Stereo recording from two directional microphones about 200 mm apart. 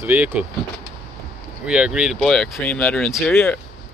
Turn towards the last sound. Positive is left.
turn(degrees=5)  # may be behind; listen again after turning